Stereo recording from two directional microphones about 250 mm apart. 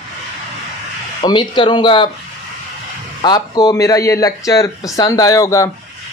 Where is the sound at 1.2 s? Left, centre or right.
Centre.